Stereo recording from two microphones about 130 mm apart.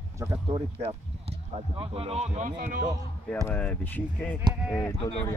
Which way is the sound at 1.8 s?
50° right (ahead or behind).